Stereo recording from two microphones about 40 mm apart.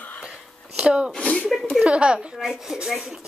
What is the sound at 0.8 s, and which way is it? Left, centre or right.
Speech, right.